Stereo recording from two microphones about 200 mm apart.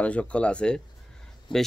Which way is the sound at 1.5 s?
25° left (ahead or behind).